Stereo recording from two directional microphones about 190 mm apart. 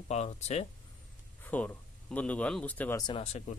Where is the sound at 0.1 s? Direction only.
35° left (ahead or behind).